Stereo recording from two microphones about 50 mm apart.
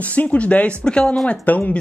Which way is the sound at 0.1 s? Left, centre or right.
Left.